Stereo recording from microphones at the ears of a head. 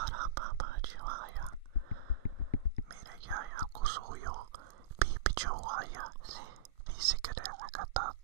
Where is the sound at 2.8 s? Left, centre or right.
Right.